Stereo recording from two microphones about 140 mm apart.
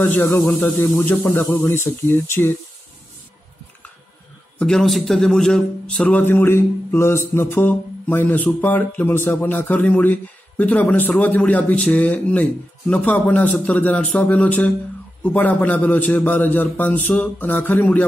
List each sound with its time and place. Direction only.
0.0 s a man's voice: 15° left (ahead or behind)
4.6 s a man's voice: 5° left (ahead or behind)